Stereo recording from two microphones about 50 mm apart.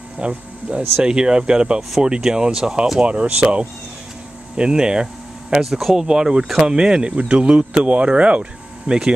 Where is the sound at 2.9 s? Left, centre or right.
Right.